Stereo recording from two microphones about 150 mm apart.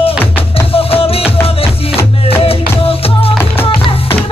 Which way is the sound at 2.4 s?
40° left (ahead or behind).